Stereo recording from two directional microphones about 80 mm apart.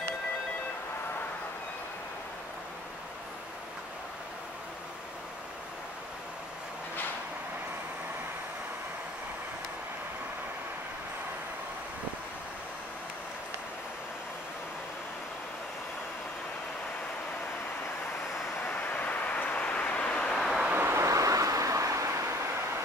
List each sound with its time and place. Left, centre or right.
18.7 s vehicle: centre
20.3 s vehicle: centre
20.7 s vehicle: right
21.0 s vehicle: right